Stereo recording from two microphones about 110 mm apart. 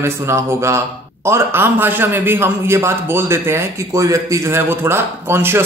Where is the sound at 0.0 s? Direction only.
25° right (ahead or behind).